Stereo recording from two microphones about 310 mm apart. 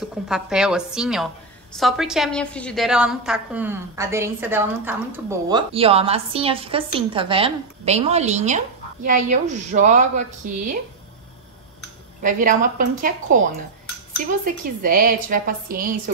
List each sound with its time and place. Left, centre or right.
0.3 s a woman's voice: centre; by 10.8 s right
12.2 s a woman's voice: right